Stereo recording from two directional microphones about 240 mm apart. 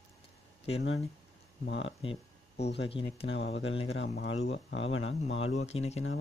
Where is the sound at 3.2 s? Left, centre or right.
Left.